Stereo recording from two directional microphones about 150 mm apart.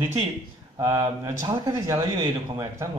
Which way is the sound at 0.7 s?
20° right (ahead or behind).